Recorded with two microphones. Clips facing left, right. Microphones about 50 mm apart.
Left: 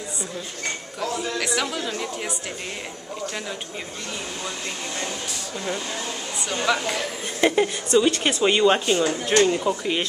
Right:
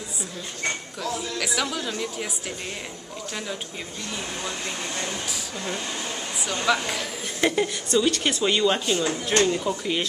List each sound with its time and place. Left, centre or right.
1.4 s speech: centre
1.7 s speech: centre
6.6 s a woman's voice: centre